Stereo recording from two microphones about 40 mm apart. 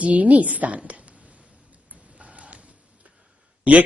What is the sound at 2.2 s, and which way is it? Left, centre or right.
Printer, right.